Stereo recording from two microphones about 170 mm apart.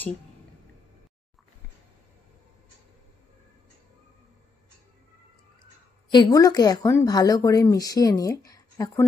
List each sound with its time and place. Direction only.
6.0 s speech: 25° left (ahead or behind)